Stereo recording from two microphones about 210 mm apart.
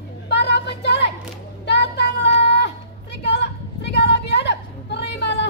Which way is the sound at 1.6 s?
55° left (ahead or behind).